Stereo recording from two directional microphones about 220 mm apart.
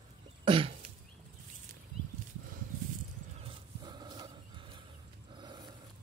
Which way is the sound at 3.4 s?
20° right (ahead or behind).